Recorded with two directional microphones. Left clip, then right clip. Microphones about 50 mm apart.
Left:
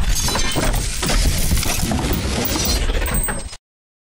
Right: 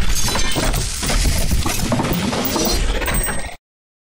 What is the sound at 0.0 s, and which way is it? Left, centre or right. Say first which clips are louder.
Shatter: even; centre.